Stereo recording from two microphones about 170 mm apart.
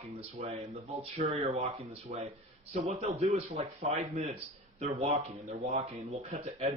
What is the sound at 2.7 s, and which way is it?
Speech, 40° right (ahead or behind).